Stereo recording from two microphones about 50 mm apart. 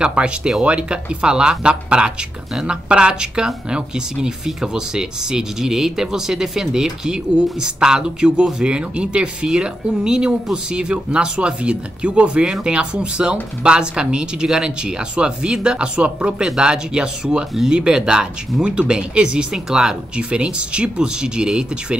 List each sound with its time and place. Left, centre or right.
0.0 s speech: centre